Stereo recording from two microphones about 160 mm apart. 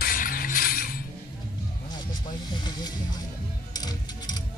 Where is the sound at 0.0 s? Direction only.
60° left (ahead or behind).